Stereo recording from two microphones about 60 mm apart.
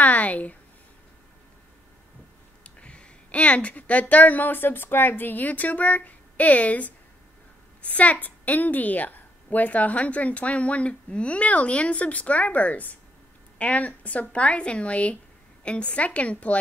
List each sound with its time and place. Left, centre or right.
0.0 s speech: left
2.6 s a woman's voice: centre